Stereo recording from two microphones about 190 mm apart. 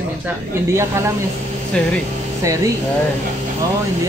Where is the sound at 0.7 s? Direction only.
15° right (ahead or behind).